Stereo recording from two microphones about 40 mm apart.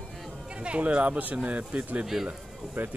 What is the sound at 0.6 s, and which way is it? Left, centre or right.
Speech, right.